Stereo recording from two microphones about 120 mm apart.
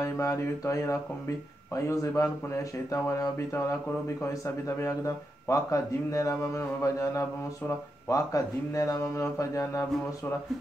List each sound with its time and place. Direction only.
0.0 s speech: 25° left (ahead or behind)